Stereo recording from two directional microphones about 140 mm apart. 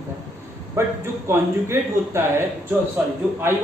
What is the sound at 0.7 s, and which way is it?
Speech, 20° right (ahead or behind).